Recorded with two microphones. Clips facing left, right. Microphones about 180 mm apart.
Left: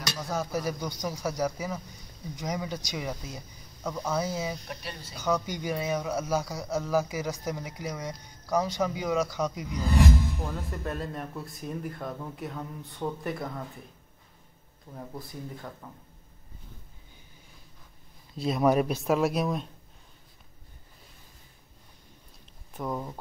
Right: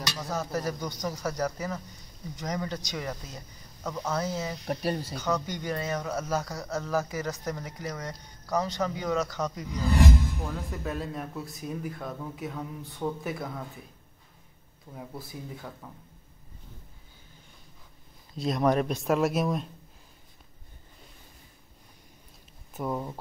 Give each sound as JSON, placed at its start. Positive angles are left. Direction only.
{"t": 0.3, "sound": "speech", "side_deg": 10}
{"t": 4.6, "sound": "speech", "side_deg": -45}
{"t": 5.1, "sound": "speech", "side_deg": 10}
{"t": 15.0, "sound": "speech", "side_deg": -5}
{"t": 18.3, "sound": "speech", "side_deg": 0}
{"t": 22.8, "sound": "speech", "side_deg": -5}